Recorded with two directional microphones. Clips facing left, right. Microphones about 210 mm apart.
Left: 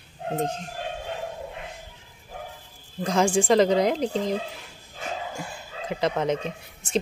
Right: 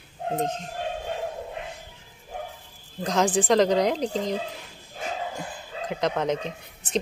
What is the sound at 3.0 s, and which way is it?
Speech, 5° left (ahead or behind).